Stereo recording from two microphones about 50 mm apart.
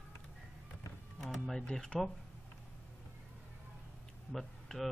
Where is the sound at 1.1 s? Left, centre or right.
Centre.